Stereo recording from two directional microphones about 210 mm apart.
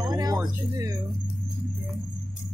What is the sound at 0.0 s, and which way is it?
Music, 20° right (ahead or behind).